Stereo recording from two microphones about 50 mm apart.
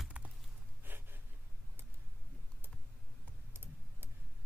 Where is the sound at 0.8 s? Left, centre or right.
Right.